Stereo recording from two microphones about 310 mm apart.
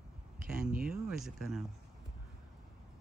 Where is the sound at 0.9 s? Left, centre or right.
Centre.